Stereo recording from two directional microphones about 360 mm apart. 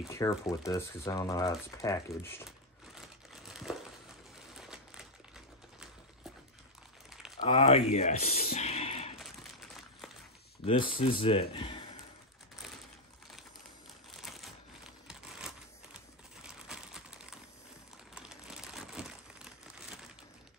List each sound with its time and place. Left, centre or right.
0.1 s speech: centre
3.4 s crushing: centre
4.6 s typewriter: centre
7.3 s a sound: centre
10.6 s speech: centre
14.1 s typewriter: centre
16.4 s a sound: centre
18.2 s crumpling: centre